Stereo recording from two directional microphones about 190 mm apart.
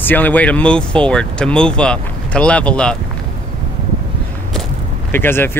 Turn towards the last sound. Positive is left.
turn(degrees=10)  # may be behind; listen again after turning